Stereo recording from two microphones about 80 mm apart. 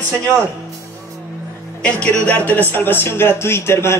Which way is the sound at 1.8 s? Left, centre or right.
Centre.